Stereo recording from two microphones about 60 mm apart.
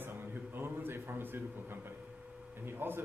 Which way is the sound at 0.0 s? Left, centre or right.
Right.